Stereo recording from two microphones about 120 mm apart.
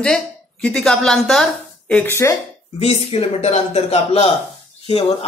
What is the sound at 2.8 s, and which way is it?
A man's voice, 60° left (ahead or behind).